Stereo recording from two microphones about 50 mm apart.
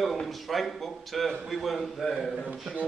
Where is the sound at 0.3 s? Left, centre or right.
Centre.